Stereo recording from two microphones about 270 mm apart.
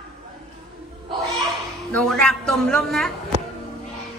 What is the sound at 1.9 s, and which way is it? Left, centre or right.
A woman's voice, centre.